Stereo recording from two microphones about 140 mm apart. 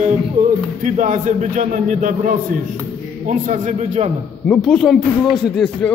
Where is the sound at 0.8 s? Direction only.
65° right (ahead or behind).